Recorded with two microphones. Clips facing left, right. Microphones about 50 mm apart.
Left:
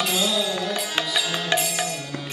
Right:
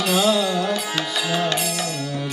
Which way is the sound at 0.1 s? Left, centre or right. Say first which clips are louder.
Right 5 dB; right.